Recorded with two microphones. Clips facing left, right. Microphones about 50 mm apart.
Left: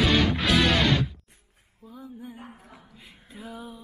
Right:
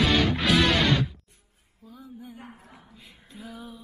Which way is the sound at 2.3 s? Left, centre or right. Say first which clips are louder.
Left 1 dB; centre.